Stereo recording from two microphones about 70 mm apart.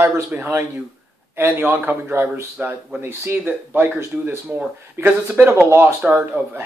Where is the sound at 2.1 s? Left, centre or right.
Right.